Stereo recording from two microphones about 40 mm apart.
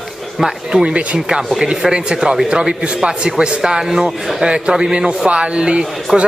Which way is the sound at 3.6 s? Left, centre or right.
Centre.